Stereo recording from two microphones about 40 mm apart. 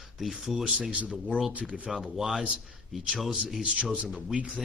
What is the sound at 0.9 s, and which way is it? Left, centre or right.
Speech, right.